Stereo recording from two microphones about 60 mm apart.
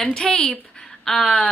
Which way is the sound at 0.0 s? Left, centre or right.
Centre.